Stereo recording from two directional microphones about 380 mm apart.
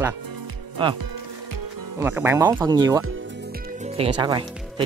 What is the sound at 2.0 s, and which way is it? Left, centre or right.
Speech, centre.